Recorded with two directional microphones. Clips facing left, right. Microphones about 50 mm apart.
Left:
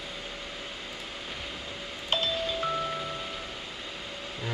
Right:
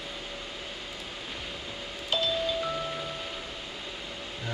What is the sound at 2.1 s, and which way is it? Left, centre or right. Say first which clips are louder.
Doorbell: even; left.